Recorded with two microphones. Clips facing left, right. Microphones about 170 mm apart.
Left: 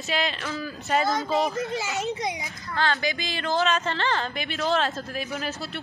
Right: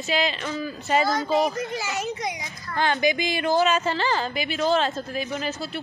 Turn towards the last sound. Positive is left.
turn(degrees=0)  # may be behind; listen again after turning